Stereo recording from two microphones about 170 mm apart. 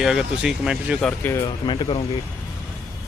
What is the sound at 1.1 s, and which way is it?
Speech, 15° left (ahead or behind).